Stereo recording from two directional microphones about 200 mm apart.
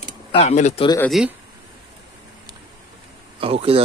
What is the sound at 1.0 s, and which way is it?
Speech, centre (ahead or behind).